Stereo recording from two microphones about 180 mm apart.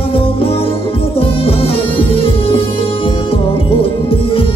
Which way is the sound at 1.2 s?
30° left (ahead or behind).